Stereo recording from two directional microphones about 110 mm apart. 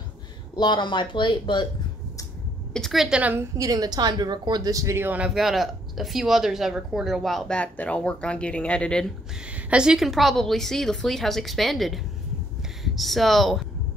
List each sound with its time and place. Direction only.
0.6 s speech: 40° left (ahead or behind)
2.7 s a woman's voice: centre (ahead or behind)
3.2 s a woman's voice: 15° right (ahead or behind)
3.5 s speech: 35° right (ahead or behind); by 5.3 s 15° right (ahead or behind)
5.3 s speech: centre (ahead or behind)
9.5 s speech: 10° right (ahead or behind)